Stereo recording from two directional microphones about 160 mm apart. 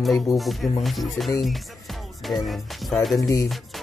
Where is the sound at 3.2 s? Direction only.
20° left (ahead or behind).